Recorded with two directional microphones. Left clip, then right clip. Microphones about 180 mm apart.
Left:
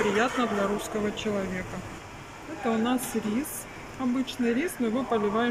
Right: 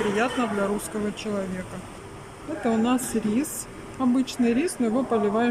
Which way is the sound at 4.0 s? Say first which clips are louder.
Right 5 dB; 15° right (ahead or behind).